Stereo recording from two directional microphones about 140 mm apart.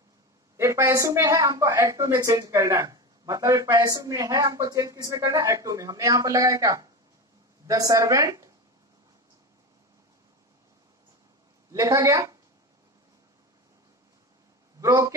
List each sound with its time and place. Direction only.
0.6 s a woman's voice: 20° right (ahead or behind)
11.7 s a woman's voice: 25° right (ahead or behind)
14.8 s a man's voice: 25° right (ahead or behind)